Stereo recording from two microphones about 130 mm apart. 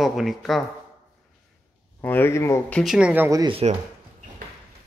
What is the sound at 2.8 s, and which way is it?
Speech, 5° right (ahead or behind).